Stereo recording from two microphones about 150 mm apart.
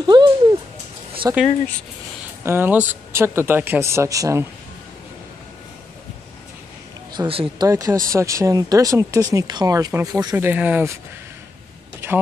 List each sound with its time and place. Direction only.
0.0 s a sound: 30° right (ahead or behind)
1.2 s speech: 20° right (ahead or behind)
2.4 s speech: 15° right (ahead or behind)
7.2 s speech: 35° right (ahead or behind)
7.6 s speech: 20° right (ahead or behind)
12.0 s a sound: 15° right (ahead or behind)